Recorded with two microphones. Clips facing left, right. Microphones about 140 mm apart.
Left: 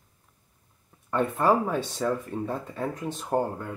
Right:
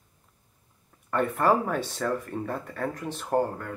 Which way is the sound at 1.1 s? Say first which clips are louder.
Even; 15° left (ahead or behind).